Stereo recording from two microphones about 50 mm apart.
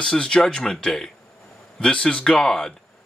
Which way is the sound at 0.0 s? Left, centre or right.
Centre.